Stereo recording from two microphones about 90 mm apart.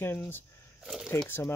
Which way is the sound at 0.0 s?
25° left (ahead or behind).